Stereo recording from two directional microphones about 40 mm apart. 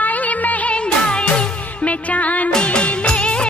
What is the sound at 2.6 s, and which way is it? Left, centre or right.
Music, left.